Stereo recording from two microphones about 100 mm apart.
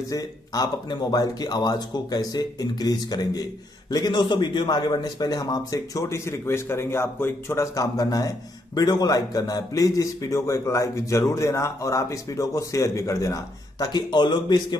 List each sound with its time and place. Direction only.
0.1 s a man's voice: 40° left (ahead or behind)